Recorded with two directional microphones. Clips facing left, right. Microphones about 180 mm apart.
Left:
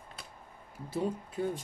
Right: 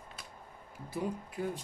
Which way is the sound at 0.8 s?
25° left (ahead or behind).